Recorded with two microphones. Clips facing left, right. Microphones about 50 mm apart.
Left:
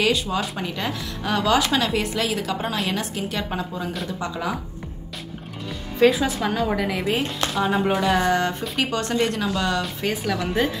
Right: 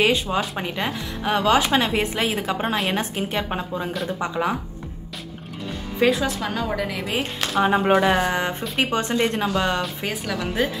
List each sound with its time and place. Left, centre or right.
0.0 s a woman's voice: right
5.9 s a woman's voice: centre
7.6 s a woman's voice: right
9.8 s a woman's voice: centre